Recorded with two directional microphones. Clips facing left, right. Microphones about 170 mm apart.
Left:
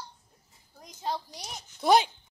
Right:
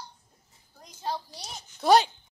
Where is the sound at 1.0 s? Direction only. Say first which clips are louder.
Even; 15° left (ahead or behind).